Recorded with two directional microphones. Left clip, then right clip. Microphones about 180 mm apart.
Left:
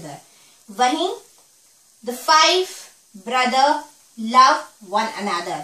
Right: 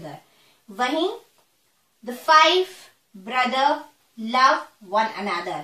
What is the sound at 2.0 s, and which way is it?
A woman's voice, 20° left (ahead or behind).